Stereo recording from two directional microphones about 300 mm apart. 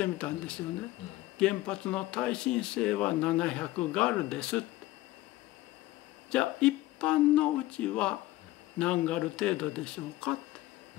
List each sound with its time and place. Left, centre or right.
0.0 s speech: centre
6.3 s speech: centre